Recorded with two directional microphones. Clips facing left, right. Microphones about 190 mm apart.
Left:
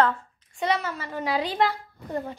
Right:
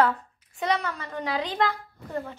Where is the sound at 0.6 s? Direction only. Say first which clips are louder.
Left 1 dB; 5° left (ahead or behind).